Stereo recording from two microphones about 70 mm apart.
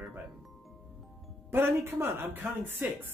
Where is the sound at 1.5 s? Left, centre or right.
Right.